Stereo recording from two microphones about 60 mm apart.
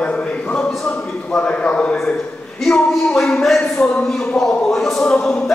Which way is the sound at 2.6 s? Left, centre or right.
Centre.